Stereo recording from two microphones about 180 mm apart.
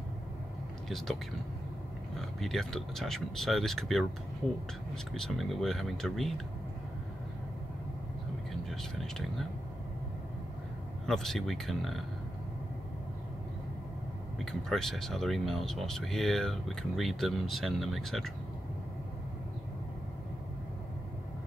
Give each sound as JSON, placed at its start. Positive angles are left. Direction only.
{"t": 0.8, "sound": "speech", "side_deg": 0}
{"t": 2.1, "sound": "speech", "side_deg": 0}
{"t": 11.1, "sound": "speech", "side_deg": 0}
{"t": 14.4, "sound": "speech", "side_deg": 0}